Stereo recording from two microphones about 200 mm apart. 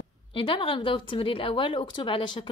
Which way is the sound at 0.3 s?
25° left (ahead or behind).